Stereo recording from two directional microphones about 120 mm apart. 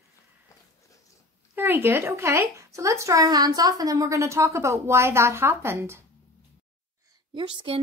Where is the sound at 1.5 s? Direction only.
15° right (ahead or behind).